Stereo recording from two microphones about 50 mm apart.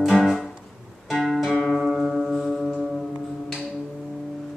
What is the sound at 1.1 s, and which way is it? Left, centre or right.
Music, centre.